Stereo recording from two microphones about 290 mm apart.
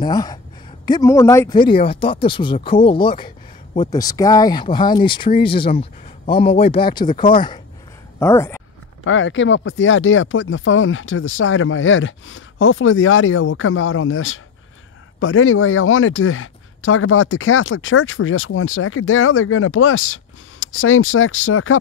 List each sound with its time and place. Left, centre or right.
0.0 s speech: centre
9.0 s speech: left